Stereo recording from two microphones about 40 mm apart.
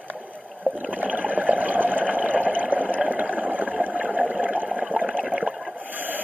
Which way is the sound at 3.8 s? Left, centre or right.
Right.